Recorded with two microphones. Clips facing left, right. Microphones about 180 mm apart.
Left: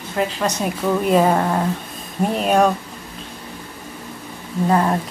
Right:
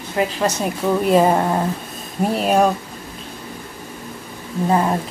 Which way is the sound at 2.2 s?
Centre (ahead or behind).